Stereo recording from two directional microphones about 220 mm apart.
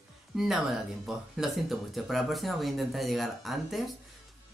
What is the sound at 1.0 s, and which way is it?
Speech, centre (ahead or behind).